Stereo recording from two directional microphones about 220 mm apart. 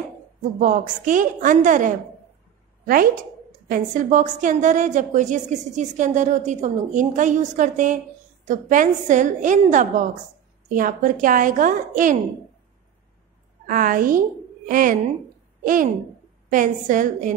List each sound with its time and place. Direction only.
0.6 s a woman's voice: 35° right (ahead or behind)
3.6 s a woman's voice: 35° right (ahead or behind)
13.7 s a woman's voice: 40° right (ahead or behind)